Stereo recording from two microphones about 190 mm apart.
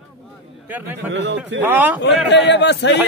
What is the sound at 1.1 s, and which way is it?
Speech, 70° right (ahead or behind).